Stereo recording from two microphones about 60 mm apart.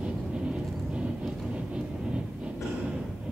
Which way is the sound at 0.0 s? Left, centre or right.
Centre.